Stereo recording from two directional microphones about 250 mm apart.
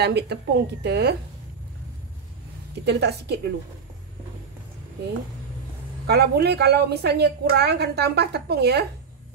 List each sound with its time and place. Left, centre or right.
0.0 s a woman's voice: right
2.8 s a woman's voice: right
6.0 s a woman's voice: right